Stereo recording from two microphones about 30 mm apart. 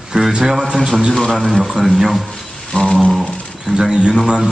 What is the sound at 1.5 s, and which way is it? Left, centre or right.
Speech, centre.